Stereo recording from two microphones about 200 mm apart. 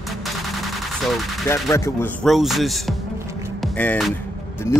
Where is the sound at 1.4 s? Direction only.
15° left (ahead or behind).